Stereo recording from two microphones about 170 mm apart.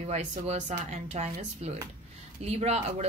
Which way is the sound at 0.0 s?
40° right (ahead or behind).